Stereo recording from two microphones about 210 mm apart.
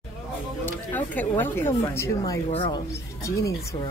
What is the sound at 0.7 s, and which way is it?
Speech, 10° left (ahead or behind).